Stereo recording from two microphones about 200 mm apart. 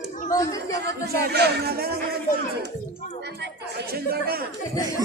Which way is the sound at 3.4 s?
55° right (ahead or behind).